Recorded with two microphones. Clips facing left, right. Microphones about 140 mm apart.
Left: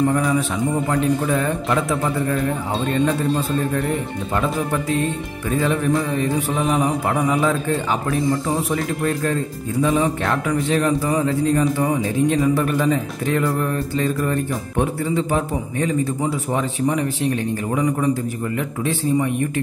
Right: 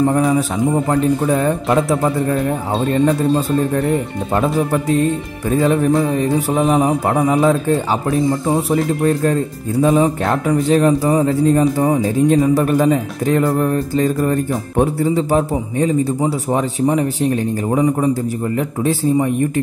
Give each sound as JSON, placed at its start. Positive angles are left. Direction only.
{"t": 0.0, "sound": "speech", "side_deg": -30}
{"t": 5.5, "sound": "speech", "side_deg": -35}